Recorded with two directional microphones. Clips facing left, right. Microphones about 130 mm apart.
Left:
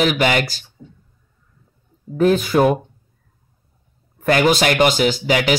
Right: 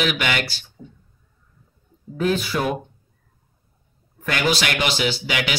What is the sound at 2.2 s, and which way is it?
Speech, 45° left (ahead or behind).